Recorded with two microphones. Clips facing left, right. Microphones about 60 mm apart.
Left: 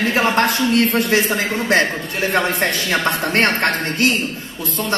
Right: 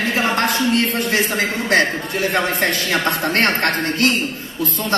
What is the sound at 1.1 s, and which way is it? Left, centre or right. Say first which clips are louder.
A man's voice: left 1 dB; left.